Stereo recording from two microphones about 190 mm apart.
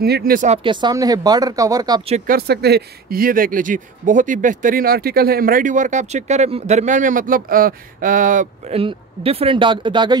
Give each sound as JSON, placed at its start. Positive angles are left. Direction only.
{"t": 0.0, "sound": "speech", "side_deg": -55}
{"t": 0.7, "sound": "speech", "side_deg": -25}
{"t": 2.0, "sound": "speech", "side_deg": -35}
{"t": 2.3, "sound": "speech", "side_deg": -60}